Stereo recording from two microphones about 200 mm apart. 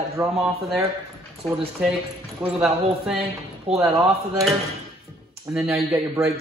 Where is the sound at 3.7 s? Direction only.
30° right (ahead or behind).